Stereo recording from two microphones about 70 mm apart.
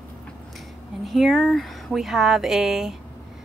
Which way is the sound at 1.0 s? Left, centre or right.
Centre.